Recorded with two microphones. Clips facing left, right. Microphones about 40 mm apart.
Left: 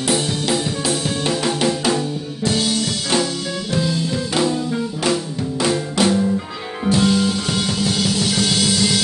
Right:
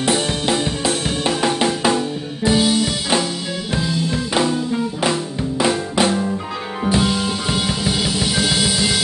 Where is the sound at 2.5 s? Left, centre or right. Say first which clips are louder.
Right 4 dB; centre.